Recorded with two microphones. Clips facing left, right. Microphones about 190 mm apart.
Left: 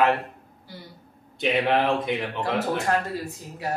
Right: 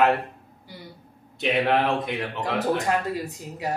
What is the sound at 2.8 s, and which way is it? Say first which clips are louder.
Speech: even; 15° right (ahead or behind).